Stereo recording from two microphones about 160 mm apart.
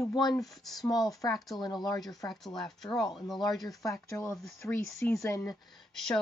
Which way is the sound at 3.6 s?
20° left (ahead or behind).